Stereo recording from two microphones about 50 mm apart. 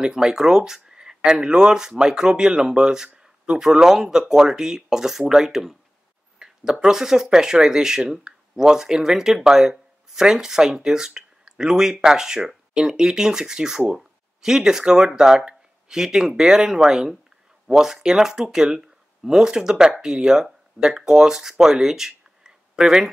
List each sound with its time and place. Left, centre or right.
0.0 s speech: centre
3.2 s a sound: centre
3.7 s speech: centre